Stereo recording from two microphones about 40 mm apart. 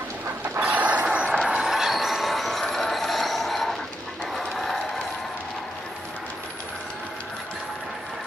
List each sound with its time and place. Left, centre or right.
0.7 s vehicle: right
1.5 s mechanisms: centre
4.6 s a sound: centre